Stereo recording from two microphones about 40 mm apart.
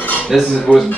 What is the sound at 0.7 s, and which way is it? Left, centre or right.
Speech, right.